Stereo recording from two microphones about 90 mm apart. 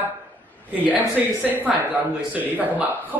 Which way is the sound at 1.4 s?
15° right (ahead or behind).